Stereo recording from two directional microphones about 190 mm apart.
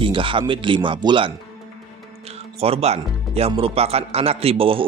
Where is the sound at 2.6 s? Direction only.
35° right (ahead or behind).